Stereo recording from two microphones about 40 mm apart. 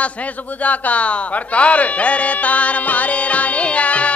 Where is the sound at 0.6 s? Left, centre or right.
Left.